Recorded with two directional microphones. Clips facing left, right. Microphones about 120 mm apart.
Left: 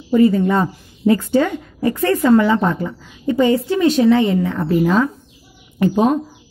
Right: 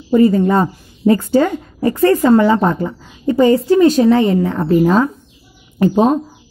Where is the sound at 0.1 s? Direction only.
35° right (ahead or behind).